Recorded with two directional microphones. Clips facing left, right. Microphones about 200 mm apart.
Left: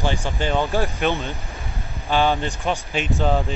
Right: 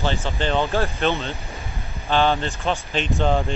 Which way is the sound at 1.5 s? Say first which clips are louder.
Even; centre (ahead or behind).